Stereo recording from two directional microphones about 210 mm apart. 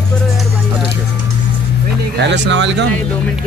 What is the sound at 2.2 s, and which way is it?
Speech, 55° right (ahead or behind).